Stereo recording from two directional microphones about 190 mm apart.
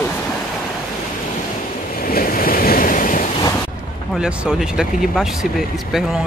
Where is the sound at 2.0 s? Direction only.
50° left (ahead or behind).